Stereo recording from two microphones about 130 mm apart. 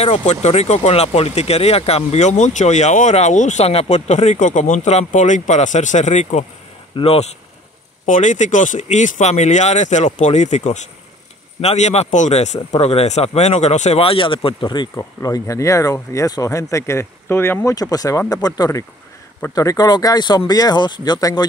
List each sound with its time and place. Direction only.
0.0 s speech: 55° left (ahead or behind)
7.0 s speech: 55° left (ahead or behind)
8.0 s speech: 70° left (ahead or behind); by 17.7 s 15° left (ahead or behind)
17.7 s speech: 30° left (ahead or behind)